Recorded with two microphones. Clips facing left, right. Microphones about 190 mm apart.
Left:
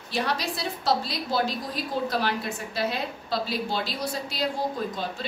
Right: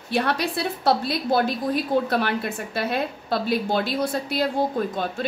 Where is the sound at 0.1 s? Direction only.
60° right (ahead or behind).